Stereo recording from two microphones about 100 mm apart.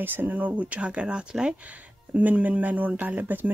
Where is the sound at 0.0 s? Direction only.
20° right (ahead or behind).